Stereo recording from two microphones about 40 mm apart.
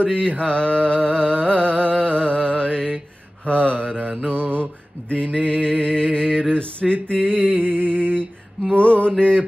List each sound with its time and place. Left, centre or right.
0.0 s music: centre
3.4 s mantra: left
3.9 s mantra: right
4.3 s mantra: right
5.4 s music: centre
7.2 s a sound: right
8.7 s music: left